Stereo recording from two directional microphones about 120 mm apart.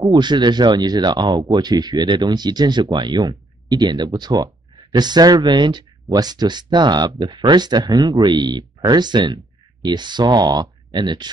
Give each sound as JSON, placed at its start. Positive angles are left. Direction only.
{"t": 0.0, "sound": "speech", "side_deg": -35}